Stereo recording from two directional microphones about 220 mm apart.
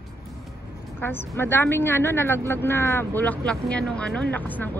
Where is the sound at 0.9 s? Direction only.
10° left (ahead or behind).